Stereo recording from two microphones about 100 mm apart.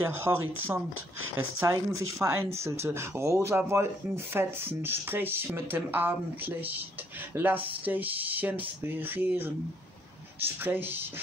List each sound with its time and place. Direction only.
0.0 s speech: 25° right (ahead or behind)
10.6 s speech: 20° right (ahead or behind)